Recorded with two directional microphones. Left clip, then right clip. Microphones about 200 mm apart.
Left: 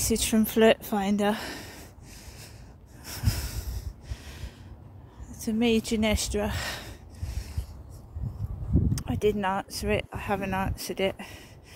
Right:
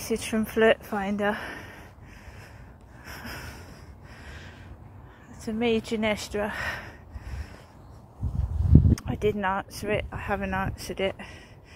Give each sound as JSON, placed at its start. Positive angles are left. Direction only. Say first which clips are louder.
{"t": 0.1, "sound": "speech", "louder": "even", "side_deg": 55}
{"t": 3.1, "sound": "a sound", "louder": "left 2 dB", "side_deg": 55}
{"t": 5.3, "sound": "speech", "louder": "even", "side_deg": 50}
{"t": 9.0, "sound": "speech", "louder": "even", "side_deg": 65}